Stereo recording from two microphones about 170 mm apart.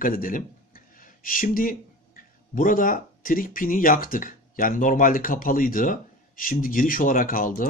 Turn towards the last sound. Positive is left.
turn(degrees=55)  # may be behind; listen again after turning